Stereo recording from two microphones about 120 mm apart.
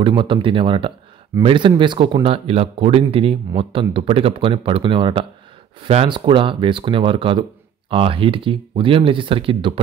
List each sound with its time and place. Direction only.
0.0 s speech: 45° right (ahead or behind)
5.8 s speech: 60° right (ahead or behind)
6.0 s speech: 40° right (ahead or behind)